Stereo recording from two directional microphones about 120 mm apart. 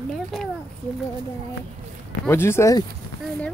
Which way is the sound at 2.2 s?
20° left (ahead or behind).